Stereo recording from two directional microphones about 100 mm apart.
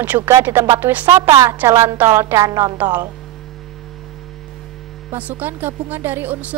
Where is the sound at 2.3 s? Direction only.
35° right (ahead or behind).